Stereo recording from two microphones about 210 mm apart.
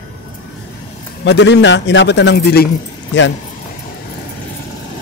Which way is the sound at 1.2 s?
55° left (ahead or behind).